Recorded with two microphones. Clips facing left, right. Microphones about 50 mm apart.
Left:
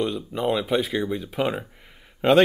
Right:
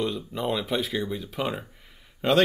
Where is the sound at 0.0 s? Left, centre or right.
Centre.